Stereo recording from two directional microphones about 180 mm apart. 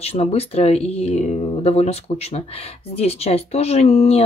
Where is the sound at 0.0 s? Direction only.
35° left (ahead or behind).